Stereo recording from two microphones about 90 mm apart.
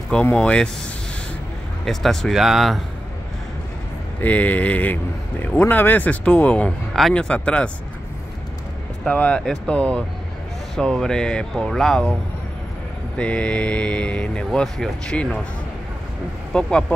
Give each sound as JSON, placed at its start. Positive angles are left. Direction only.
{"t": 0.1, "sound": "speech", "side_deg": 10}
{"t": 1.9, "sound": "speech", "side_deg": 5}
{"t": 4.2, "sound": "speech", "side_deg": 15}
{"t": 9.0, "sound": "speech", "side_deg": 15}
{"t": 13.2, "sound": "speech", "side_deg": 15}
{"t": 16.5, "sound": "speech", "side_deg": 10}